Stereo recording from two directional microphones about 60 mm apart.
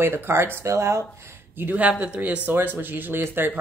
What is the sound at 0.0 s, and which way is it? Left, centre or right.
Speech, right.